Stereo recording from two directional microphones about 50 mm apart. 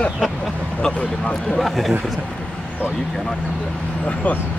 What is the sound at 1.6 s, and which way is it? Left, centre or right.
Speech, centre.